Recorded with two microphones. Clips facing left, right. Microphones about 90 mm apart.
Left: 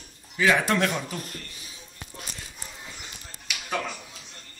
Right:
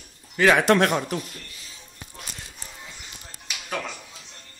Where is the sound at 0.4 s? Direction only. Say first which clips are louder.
Right 5 dB; 65° right (ahead or behind).